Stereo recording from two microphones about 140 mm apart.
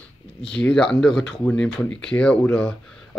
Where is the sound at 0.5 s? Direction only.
5° left (ahead or behind).